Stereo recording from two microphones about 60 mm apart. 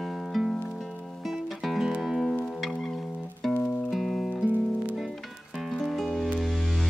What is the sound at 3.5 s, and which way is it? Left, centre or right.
Music, left.